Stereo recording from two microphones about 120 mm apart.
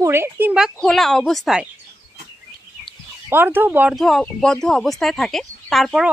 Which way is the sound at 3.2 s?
15° right (ahead or behind).